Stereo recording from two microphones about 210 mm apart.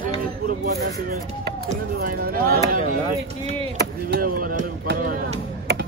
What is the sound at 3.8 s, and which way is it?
Speech, 45° right (ahead or behind).